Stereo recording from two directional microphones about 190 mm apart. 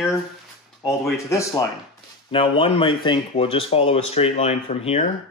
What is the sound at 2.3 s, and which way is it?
Speech, 30° left (ahead or behind).